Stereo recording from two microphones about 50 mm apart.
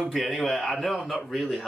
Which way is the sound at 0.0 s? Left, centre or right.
Centre.